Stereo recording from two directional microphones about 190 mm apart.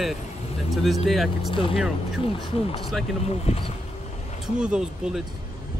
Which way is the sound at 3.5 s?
35° left (ahead or behind).